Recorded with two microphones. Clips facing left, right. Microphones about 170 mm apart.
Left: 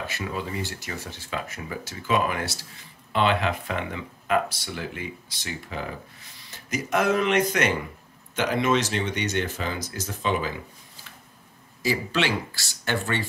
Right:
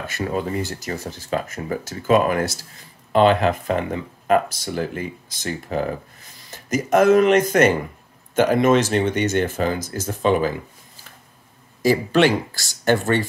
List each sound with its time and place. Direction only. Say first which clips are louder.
0.0 s speech: right 7 dB; 45° right (ahead or behind)
11.8 s speech: right 9 dB; 50° right (ahead or behind)